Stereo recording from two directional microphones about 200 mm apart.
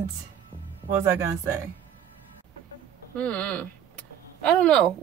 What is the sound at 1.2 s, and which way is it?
Speech, 15° right (ahead or behind).